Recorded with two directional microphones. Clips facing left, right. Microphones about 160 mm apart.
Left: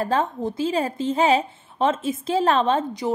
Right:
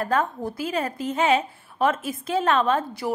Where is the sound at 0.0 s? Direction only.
25° left (ahead or behind).